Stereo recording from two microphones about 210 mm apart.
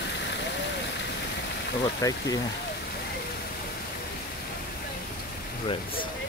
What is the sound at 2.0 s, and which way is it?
Speech, 15° left (ahead or behind).